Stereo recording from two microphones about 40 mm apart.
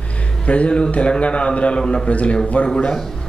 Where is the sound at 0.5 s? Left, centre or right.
Left.